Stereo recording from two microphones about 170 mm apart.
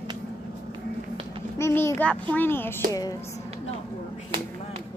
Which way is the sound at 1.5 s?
15° left (ahead or behind).